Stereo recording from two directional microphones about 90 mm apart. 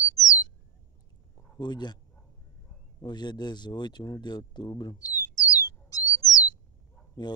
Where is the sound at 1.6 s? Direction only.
55° left (ahead or behind).